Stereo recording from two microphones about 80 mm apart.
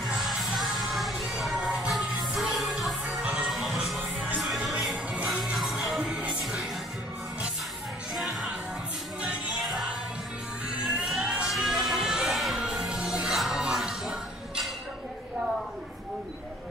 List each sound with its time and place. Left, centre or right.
0.0 s music: centre
8.1 s music: centre
10.8 s a sound: centre